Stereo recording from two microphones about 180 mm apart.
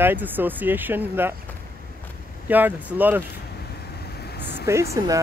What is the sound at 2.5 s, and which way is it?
Speech, 10° right (ahead or behind).